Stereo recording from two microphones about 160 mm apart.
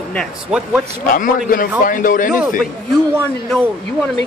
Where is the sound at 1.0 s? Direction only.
60° left (ahead or behind).